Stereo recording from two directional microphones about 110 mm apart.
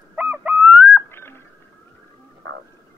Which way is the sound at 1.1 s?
20° left (ahead or behind).